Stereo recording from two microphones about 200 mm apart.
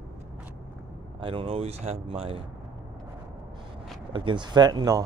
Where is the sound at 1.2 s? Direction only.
25° right (ahead or behind).